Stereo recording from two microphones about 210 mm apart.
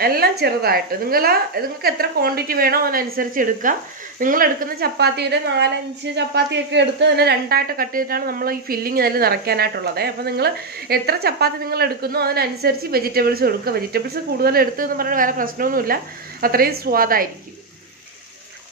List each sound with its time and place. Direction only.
0.0 s a woman's voice: 45° right (ahead or behind)